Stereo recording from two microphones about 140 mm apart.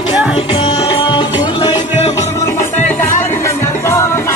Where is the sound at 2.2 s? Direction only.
20° left (ahead or behind).